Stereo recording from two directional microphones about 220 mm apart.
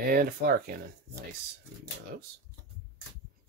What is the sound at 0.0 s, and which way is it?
Speech, 40° right (ahead or behind).